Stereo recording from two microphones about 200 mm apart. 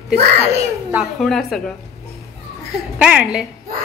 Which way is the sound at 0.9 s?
Centre (ahead or behind).